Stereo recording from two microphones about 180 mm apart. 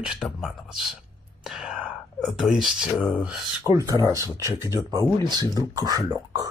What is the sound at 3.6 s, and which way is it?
Speech, 20° right (ahead or behind).